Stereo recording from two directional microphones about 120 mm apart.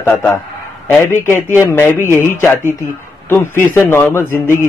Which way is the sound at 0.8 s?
15° left (ahead or behind).